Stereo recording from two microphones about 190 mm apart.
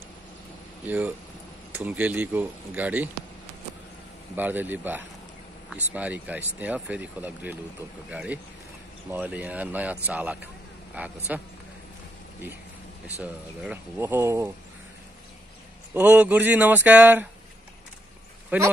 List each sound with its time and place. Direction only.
0.8 s speech: 10° right (ahead or behind)
4.4 s speech: 10° right (ahead or behind)
13.2 s speech: 5° right (ahead or behind)
15.9 s speech: 10° right (ahead or behind)
18.5 s speech: 10° right (ahead or behind)